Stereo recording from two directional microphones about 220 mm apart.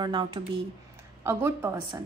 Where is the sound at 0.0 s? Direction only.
20° right (ahead or behind).